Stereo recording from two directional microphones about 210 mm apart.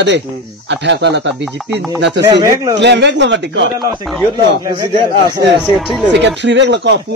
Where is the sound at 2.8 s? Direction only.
55° right (ahead or behind).